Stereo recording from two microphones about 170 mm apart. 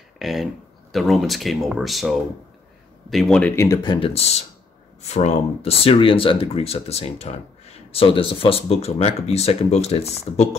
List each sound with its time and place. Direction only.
0.2 s speech: centre (ahead or behind)
3.6 s speech: 25° left (ahead or behind)